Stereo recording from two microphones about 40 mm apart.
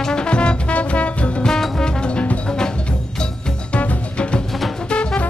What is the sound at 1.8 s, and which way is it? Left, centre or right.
Music, left.